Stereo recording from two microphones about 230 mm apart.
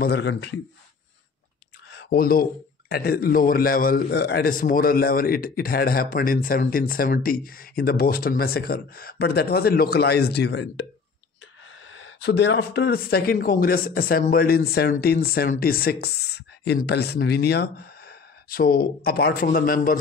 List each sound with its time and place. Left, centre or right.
0.0 s speech: left
1.9 s a sound: left
2.9 s a man's voice: left